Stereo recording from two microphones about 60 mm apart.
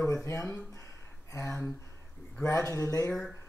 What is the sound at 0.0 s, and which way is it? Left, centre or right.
Speech, left.